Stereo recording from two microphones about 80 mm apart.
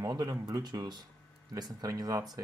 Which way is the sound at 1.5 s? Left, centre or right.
Right.